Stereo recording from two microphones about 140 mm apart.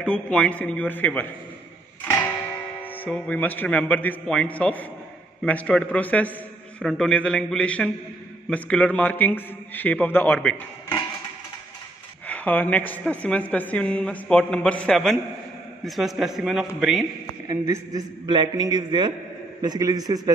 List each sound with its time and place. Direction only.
0.0 s a woman's voice: 5° left (ahead or behind)
2.8 s a woman's voice: 10° left (ahead or behind)
12.3 s a woman's voice: 10° left (ahead or behind); by 17.0 s 5° right (ahead or behind)
17.5 s a man's voice: 25° right (ahead or behind)